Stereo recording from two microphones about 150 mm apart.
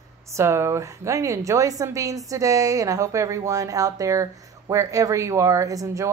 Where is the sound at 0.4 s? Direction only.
20° right (ahead or behind).